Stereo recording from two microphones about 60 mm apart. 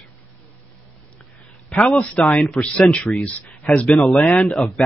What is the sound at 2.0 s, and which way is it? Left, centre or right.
Speech, left.